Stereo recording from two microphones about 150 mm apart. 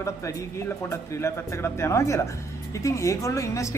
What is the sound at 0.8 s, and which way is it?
A man's voice, 20° left (ahead or behind).